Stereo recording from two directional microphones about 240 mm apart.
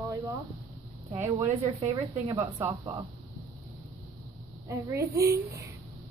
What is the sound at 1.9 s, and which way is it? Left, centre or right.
Speech, centre.